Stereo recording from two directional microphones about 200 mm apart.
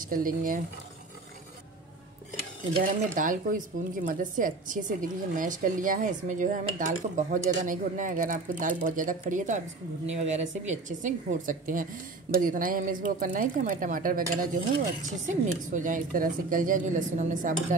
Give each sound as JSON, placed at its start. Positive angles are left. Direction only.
{"t": 0.0, "sound": "a woman's voice", "side_deg": -45}
{"t": 2.8, "sound": "a woman's voice", "side_deg": -40}